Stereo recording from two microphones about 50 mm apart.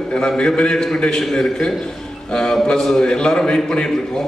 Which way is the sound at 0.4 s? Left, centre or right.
Centre.